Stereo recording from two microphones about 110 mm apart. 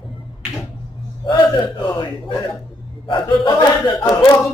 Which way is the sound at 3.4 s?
35° left (ahead or behind).